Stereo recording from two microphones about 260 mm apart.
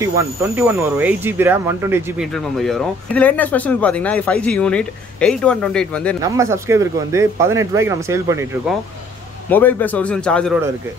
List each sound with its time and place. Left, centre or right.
0.0 s speech: centre
2.3 s speech: centre
6.2 s speech: centre
9.5 s speech: centre